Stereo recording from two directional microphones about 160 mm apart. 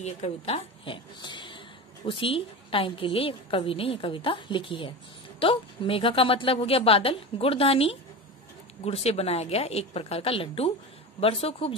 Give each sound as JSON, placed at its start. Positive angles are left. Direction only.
{"t": 0.0, "sound": "a woman's voice", "side_deg": 40}